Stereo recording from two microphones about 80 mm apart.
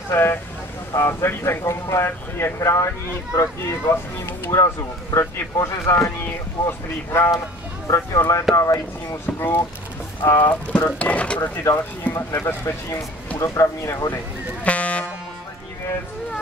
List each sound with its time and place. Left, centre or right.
0.1 s speech: left
7.1 s speech: left
8.5 s speech: left
9.2 s speech: left
11.6 s speech: left
14.6 s a sound: centre